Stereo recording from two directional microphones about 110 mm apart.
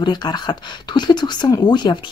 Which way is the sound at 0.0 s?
40° left (ahead or behind).